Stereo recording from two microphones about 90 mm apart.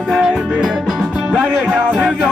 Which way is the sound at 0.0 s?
Centre (ahead or behind).